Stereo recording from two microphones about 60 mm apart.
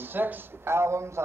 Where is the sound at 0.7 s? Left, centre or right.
Right.